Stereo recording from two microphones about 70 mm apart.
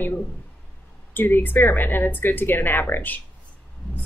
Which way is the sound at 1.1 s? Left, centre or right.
Left.